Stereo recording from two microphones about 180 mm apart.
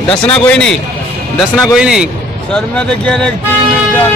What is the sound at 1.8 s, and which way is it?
Speech, 5° right (ahead or behind).